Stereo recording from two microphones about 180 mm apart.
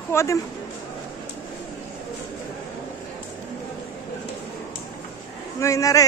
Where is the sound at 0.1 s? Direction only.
15° left (ahead or behind).